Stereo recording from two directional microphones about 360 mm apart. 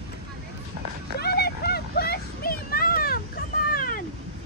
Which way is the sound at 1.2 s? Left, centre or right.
Left.